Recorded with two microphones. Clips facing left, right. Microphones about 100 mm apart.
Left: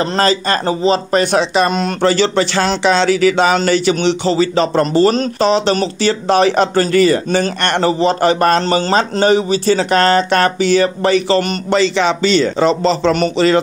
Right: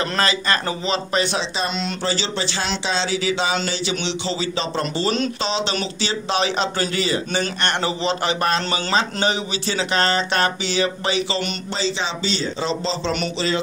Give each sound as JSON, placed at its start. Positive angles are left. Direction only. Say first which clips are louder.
{"t": 0.0, "sound": "a man's voice", "louder": "left 7 dB", "side_deg": 35}
{"t": 7.2, "sound": "a man's voice", "louder": "left 7 dB", "side_deg": 40}
{"t": 11.7, "sound": "a man's voice", "louder": "left 12 dB", "side_deg": 65}